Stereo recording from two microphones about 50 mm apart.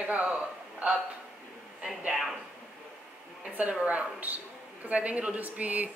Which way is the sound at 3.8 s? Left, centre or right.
Right.